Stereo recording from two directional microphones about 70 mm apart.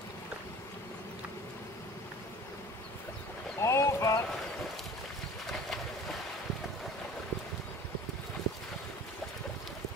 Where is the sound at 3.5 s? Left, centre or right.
Left.